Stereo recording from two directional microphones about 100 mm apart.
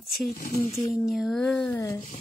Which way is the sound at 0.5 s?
30° left (ahead or behind).